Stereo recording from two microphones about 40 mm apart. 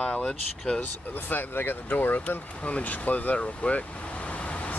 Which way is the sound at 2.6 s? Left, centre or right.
Left.